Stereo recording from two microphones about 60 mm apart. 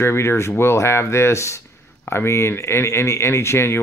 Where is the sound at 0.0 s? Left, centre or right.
Left.